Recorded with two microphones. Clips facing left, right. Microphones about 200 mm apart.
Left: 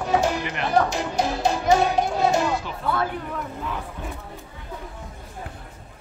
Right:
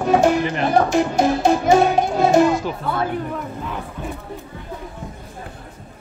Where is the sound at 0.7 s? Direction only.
50° right (ahead or behind).